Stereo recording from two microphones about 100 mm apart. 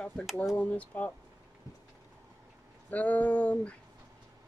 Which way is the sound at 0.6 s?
15° left (ahead or behind).